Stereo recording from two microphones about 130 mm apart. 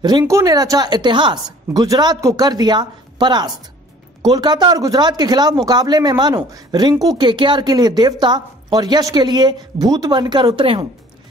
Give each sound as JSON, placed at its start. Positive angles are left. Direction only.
{"t": 0.2, "sound": "speech", "side_deg": -25}